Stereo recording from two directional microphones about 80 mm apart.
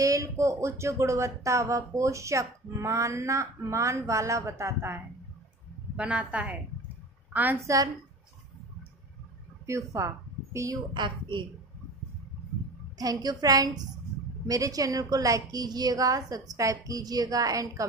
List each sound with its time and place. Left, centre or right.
0.0 s speech: right
5.9 s a woman's voice: centre
7.6 s a woman's voice: right
9.7 s speech: right
10.9 s a woman's voice: right
12.9 s a woman's voice: right